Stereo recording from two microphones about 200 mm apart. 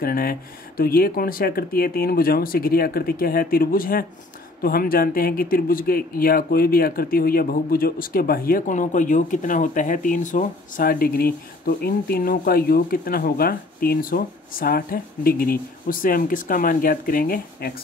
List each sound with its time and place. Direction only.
0.0 s speech: 45° left (ahead or behind)